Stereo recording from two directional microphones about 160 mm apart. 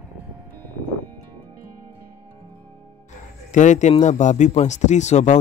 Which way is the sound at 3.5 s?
50° left (ahead or behind).